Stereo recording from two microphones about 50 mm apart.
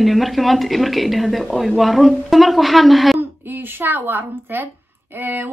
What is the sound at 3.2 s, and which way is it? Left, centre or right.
A woman's voice, right.